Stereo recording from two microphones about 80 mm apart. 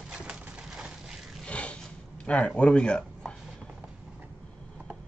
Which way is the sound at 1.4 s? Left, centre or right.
Centre.